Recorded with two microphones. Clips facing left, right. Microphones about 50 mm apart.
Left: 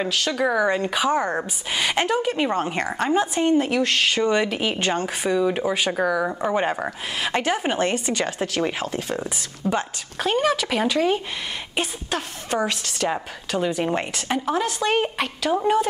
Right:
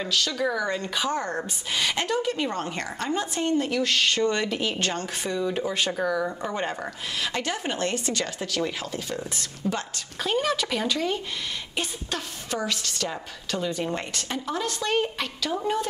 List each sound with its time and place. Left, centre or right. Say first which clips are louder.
0.0 s a woman's voice: left 4 dB; left
4.1 s speech: left 4 dB; centre
8.4 s a woman's voice: left 5 dB; left
9.4 s speech: left 5 dB; centre
11.7 s a woman's voice: left 6 dB; left